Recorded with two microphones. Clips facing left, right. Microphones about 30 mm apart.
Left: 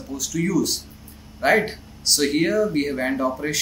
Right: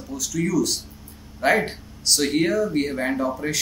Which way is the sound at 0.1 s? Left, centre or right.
Centre.